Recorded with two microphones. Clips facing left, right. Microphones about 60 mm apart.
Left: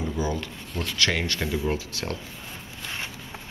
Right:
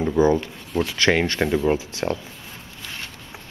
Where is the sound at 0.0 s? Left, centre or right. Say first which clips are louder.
Right 10 dB; right.